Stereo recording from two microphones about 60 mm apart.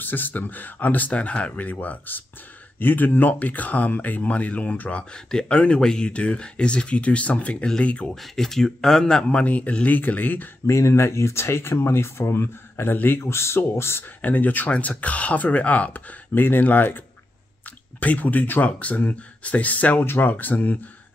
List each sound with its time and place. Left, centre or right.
0.0 s speech: left
5.1 s speech: centre
8.1 s speech: centre
9.0 s speech: centre
10.7 s speech: left
14.2 s speech: left